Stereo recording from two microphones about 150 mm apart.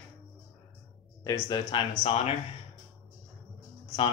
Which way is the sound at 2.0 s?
45° left (ahead or behind).